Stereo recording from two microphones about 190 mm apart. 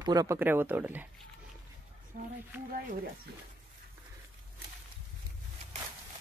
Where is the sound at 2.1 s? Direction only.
45° right (ahead or behind).